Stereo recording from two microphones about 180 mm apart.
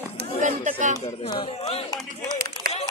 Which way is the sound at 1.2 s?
30° left (ahead or behind).